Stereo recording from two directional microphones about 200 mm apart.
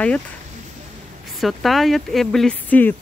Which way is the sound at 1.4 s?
Centre (ahead or behind).